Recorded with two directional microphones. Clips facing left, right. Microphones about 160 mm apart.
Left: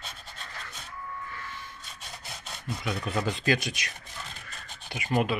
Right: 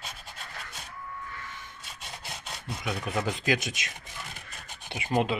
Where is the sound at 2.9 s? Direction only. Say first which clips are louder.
Even; 15° right (ahead or behind).